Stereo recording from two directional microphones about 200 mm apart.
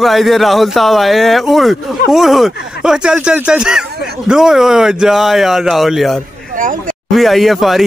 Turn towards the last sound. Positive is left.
turn(degrees=0)  # may be behind; listen again after turning